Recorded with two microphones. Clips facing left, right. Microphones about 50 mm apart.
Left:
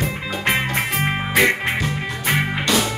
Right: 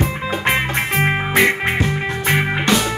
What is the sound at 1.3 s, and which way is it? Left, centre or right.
Music, centre.